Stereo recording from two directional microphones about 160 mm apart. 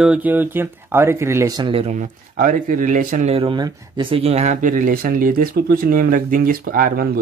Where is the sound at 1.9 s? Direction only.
55° right (ahead or behind).